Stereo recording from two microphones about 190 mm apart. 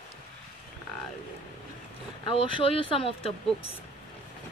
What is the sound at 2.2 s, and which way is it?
Speech, 25° left (ahead or behind).